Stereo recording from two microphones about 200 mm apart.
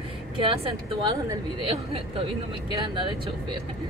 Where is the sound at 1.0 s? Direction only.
25° right (ahead or behind).